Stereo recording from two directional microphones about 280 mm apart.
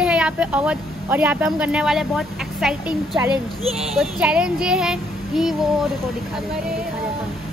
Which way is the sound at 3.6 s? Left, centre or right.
Right.